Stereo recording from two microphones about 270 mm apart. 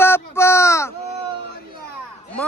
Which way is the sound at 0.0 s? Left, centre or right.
Centre.